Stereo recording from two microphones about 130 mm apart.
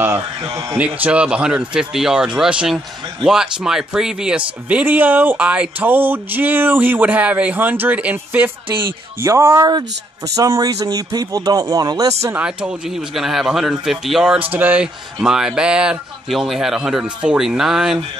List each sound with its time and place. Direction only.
0.5 s speech: 25° right (ahead or behind)
0.7 s speech: 10° right (ahead or behind)
12.4 s speech: 5° right (ahead or behind)